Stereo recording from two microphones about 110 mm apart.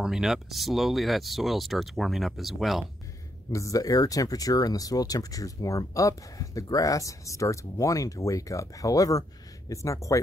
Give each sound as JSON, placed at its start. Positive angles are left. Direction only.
{"t": 0.0, "sound": "speech", "side_deg": -5}
{"t": 3.5, "sound": "speech", "side_deg": 30}